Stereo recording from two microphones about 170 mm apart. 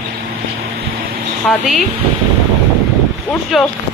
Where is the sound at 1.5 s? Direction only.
Centre (ahead or behind).